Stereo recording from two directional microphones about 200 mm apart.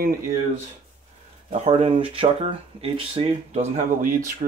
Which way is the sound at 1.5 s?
30° right (ahead or behind).